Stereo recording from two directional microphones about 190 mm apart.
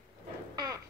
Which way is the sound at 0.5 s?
20° right (ahead or behind).